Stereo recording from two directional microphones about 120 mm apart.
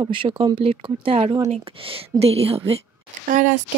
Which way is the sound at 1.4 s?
60° right (ahead or behind).